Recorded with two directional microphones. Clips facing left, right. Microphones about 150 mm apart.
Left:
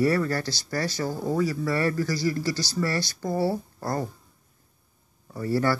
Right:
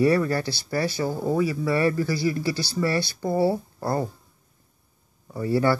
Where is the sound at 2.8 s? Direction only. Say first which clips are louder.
Right 3 dB; 5° right (ahead or behind).